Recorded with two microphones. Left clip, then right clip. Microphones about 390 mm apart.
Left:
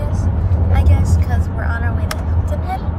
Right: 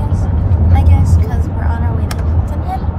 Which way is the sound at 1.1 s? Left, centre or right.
Right.